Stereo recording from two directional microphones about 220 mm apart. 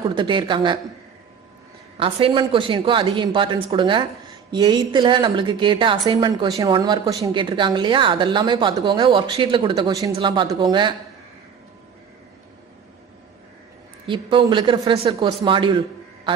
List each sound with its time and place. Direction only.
0.1 s a woman's voice: 20° right (ahead or behind)
2.0 s a woman's voice: 25° right (ahead or behind)
14.0 s a woman's voice: 20° right (ahead or behind)